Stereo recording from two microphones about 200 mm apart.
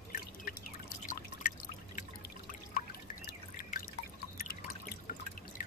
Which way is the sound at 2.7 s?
50° left (ahead or behind).